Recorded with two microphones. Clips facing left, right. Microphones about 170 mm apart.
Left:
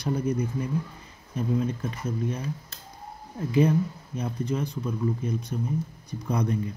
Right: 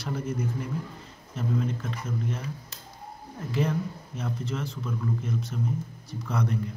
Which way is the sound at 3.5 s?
15° left (ahead or behind).